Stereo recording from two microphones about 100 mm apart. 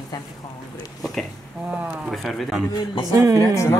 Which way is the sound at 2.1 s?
Centre (ahead or behind).